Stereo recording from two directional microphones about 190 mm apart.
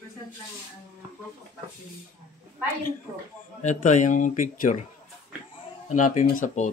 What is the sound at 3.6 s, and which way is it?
Speech, 40° left (ahead or behind).